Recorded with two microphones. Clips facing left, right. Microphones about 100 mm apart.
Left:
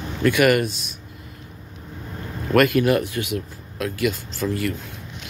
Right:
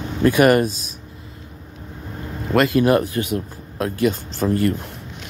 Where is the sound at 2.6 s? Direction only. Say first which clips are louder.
Right 2 dB; 30° right (ahead or behind).